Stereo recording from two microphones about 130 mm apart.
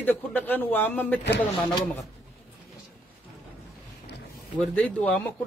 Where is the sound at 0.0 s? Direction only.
15° left (ahead or behind).